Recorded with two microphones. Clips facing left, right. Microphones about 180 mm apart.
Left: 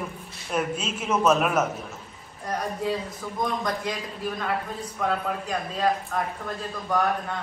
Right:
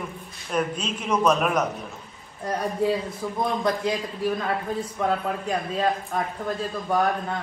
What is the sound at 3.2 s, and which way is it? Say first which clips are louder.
Speech: right 5 dB; 10° right (ahead or behind).